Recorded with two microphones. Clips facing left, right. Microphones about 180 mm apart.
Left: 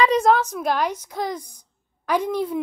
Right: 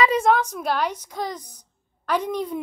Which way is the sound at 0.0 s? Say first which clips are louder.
Left 2 dB; 5° right (ahead or behind).